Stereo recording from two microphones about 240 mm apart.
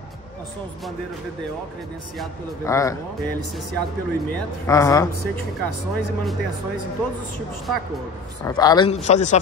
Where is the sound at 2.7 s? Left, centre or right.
Centre.